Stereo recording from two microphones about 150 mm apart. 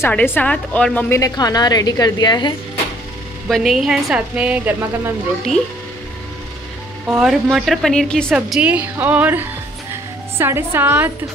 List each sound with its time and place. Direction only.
0.0 s a woman's voice: 15° left (ahead or behind)
1.2 s a woman's voice: 25° left (ahead or behind)
3.4 s a woman's voice: centre (ahead or behind)
7.1 s a woman's voice: 5° right (ahead or behind)
8.5 s a woman's voice: 5° right (ahead or behind)